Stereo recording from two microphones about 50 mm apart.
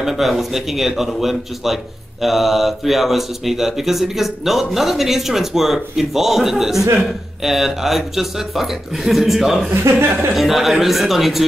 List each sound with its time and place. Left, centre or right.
0.0 s speech: centre
9.8 s speech: right
10.3 s speech: centre